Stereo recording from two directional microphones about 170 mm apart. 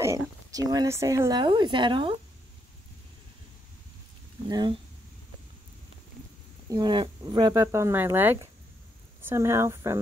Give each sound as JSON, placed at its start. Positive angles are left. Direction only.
{"t": 0.0, "sound": "speech", "side_deg": -20}
{"t": 4.5, "sound": "speech", "side_deg": -25}
{"t": 6.7, "sound": "speech", "side_deg": -25}